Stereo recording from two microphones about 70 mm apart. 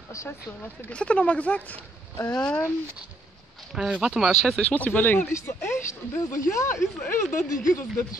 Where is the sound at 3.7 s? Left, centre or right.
Centre.